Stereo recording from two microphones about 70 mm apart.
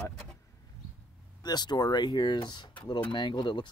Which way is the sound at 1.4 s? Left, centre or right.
Left.